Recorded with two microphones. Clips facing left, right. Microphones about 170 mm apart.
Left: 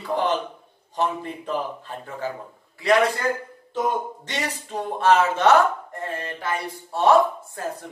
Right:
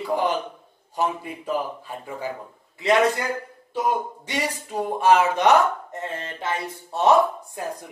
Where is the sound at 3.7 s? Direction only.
10° right (ahead or behind).